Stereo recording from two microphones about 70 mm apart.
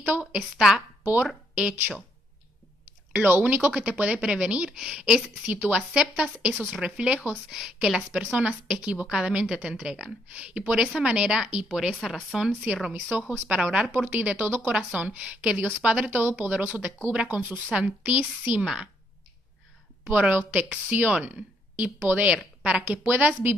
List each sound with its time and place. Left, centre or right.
0.2 s speech: centre
0.6 s speech: centre
3.1 s speech: right
5.9 s a woman's voice: centre
8.1 s speech: centre
12.7 s speech: right
13.5 s speech: centre
14.0 s speech: right
18.6 s speech: centre
20.2 s speech: right
23.0 s speech: right